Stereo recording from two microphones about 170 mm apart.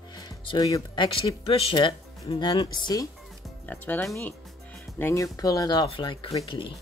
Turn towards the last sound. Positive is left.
turn(degrees=30)  # may be behind; listen again after turning